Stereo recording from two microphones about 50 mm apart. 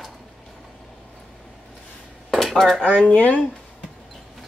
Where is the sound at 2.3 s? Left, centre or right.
Centre.